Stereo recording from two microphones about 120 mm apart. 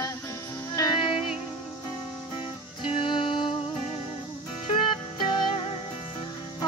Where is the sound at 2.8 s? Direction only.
45° left (ahead or behind).